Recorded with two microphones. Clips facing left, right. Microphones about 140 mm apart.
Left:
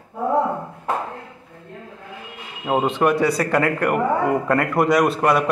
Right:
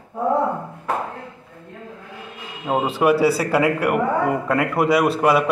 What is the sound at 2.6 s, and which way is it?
Speech, centre (ahead or behind).